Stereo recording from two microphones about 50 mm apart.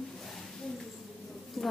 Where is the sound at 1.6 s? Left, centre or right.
Centre.